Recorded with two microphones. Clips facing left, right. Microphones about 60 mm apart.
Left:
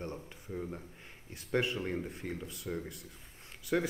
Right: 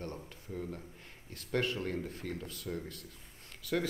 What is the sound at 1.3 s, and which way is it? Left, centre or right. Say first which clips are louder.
Speech: left 1 dB; centre.